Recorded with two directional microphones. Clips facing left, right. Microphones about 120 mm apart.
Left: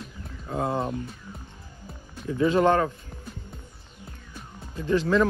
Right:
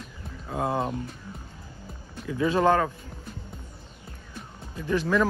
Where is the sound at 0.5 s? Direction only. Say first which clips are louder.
Even; 20° right (ahead or behind).